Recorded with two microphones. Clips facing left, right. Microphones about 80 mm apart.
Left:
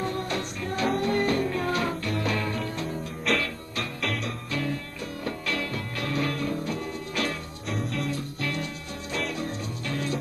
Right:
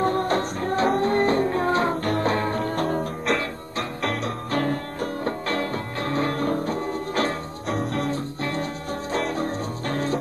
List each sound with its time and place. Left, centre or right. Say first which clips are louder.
0.0 s music: right 8 dB; right
8.4 s music: right 4 dB; right